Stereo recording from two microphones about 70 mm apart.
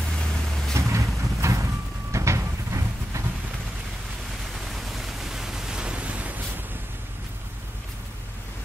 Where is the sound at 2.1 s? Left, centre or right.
Right.